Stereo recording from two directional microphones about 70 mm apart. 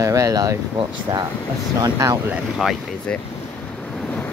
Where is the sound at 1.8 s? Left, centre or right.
Right.